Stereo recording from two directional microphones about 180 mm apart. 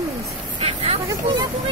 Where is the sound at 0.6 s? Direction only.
35° right (ahead or behind).